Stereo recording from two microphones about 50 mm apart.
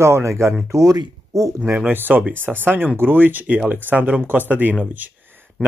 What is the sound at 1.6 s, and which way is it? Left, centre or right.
Speech, right.